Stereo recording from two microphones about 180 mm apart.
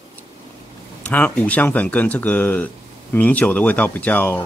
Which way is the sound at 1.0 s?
10° left (ahead or behind).